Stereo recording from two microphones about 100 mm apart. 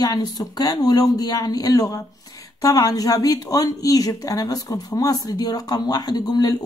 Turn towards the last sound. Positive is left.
turn(degrees=40)  # may be behind; listen again after turning